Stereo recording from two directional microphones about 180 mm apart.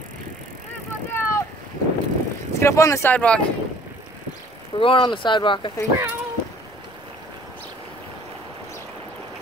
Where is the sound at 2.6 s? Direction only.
15° left (ahead or behind).